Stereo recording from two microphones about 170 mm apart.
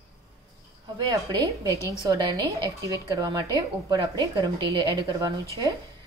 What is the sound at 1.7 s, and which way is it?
Speech, 15° left (ahead or behind).